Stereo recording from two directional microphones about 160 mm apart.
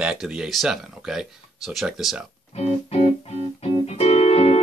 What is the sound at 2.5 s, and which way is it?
Music, 45° left (ahead or behind).